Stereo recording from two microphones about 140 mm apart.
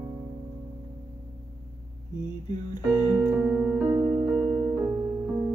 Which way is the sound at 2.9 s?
10° right (ahead or behind).